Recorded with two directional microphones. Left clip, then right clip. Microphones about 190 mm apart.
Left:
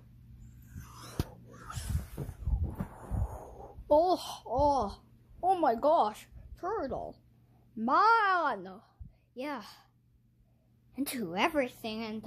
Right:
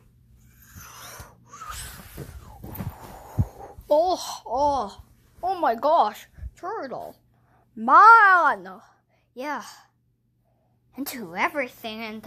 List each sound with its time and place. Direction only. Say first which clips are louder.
2.9 s heart sounds: right 4 dB; centre (ahead or behind)
3.4 s a sound: right 6 dB; 15° right (ahead or behind)
3.9 s a child's voice: right 5 dB; centre (ahead or behind)
7.7 s a woman's voice: right 13 dB; 10° right (ahead or behind)
11.0 s a child's voice: right 2 dB; centre (ahead or behind)
11.3 s a woman's voice: right 4 dB; 15° left (ahead or behind)
11.8 s a woman's voice: right 5 dB; 5° right (ahead or behind)